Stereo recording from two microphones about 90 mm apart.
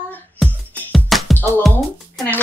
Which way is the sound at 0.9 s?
Centre (ahead or behind).